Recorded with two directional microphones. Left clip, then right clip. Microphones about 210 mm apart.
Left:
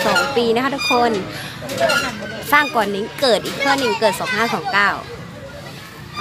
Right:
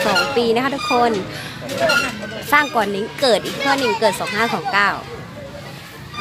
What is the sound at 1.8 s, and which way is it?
Speech, 30° left (ahead or behind).